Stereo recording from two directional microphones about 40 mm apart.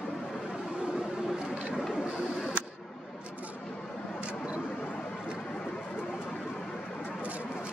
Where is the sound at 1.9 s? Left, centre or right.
Centre.